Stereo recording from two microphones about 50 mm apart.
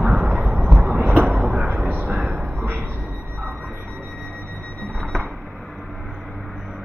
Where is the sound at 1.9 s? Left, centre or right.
Right.